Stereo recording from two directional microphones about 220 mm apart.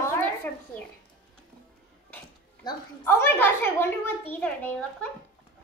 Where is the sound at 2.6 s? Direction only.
10° left (ahead or behind).